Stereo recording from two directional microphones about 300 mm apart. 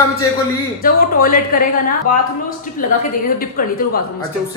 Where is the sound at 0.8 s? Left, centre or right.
Left.